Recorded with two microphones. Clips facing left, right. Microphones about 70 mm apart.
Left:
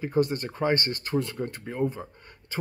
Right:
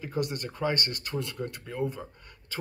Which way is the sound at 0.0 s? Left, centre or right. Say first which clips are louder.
Left 6 dB; left.